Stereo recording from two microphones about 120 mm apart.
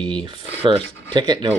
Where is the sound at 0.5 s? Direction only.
50° right (ahead or behind).